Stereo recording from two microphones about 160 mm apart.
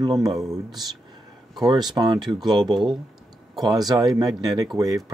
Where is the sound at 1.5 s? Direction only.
25° right (ahead or behind).